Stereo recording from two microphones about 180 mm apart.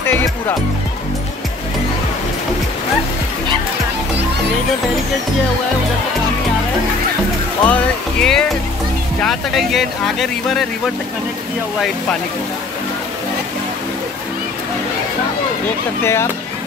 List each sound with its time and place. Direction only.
0.0 s speech: 15° left (ahead or behind)
7.6 s speech: 5° left (ahead or behind)
16.0 s speech: 15° left (ahead or behind)